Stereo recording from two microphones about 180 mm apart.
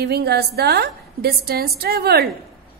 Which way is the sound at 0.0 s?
65° right (ahead or behind).